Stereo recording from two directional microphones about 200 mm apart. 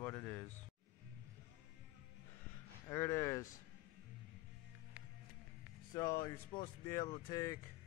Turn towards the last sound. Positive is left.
turn(degrees=15)  # may be behind; listen again after turning